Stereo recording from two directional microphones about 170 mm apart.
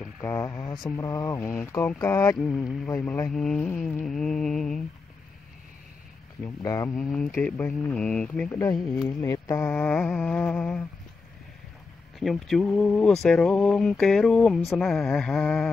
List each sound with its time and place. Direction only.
0.0 s speech: 10° left (ahead or behind)
6.4 s speech: 20° left (ahead or behind)
7.0 s speech: 5° left (ahead or behind)
12.2 s speech: centre (ahead or behind)